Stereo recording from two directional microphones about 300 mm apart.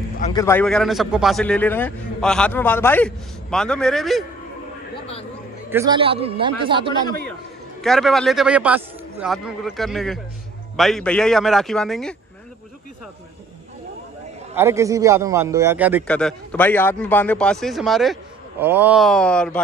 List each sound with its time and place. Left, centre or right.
0.2 s a man's voice: centre
5.7 s a man's voice: centre
7.8 s a man's voice: centre
14.5 s a man's voice: centre